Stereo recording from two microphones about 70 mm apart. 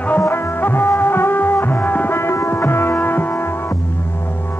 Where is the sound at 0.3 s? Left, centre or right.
Left.